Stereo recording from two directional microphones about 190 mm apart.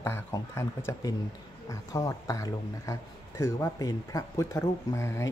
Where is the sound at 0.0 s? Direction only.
15° left (ahead or behind).